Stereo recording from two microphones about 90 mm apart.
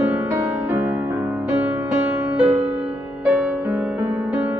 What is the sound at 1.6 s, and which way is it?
Music, 15° right (ahead or behind).